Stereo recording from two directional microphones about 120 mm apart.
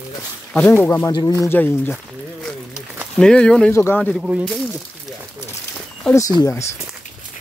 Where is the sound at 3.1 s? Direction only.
5° left (ahead or behind).